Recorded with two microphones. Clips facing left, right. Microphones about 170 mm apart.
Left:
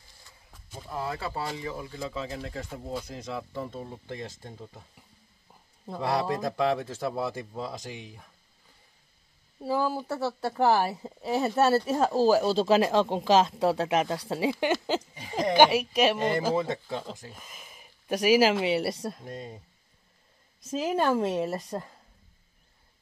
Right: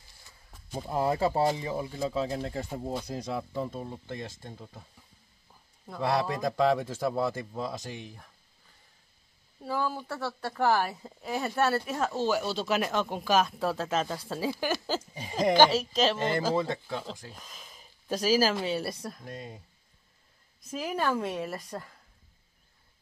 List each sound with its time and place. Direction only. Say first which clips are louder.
0.7 s speech: right 6 dB; 30° right (ahead or behind)
3.5 s speech: right 2 dB; 10° right (ahead or behind)
3.9 s speech: even; 10° left (ahead or behind)
5.5 s a man's voice: left 5 dB; 15° left (ahead or behind)
9.6 s a man's voice: left 4 dB; 35° left (ahead or behind)
17.3 s a sound: left 1 dB; 5° left (ahead or behind)
18.6 s a woman's voice: left 4 dB; 75° left (ahead or behind)
18.9 s speech: left 5 dB; 25° left (ahead or behind)
20.7 s speech: left 4 dB; 25° left (ahead or behind)